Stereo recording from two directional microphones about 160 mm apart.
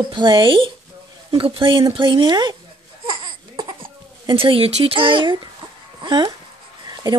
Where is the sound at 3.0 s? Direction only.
30° right (ahead or behind).